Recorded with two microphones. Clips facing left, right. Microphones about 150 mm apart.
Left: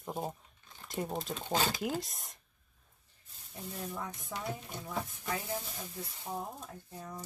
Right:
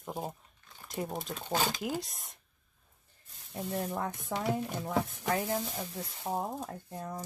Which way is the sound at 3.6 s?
60° right (ahead or behind).